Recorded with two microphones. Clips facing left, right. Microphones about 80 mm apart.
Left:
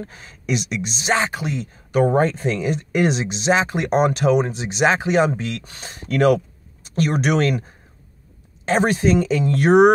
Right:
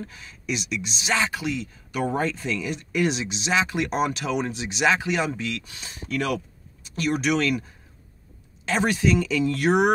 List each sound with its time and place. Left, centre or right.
0.0 s speech: left
8.6 s speech: left